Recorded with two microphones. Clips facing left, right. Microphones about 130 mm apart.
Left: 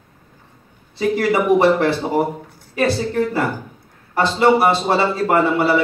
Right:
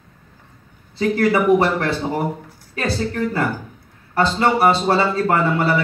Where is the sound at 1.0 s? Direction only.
15° left (ahead or behind).